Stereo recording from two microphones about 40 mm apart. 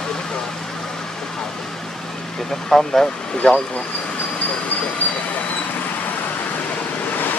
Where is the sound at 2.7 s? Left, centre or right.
Centre.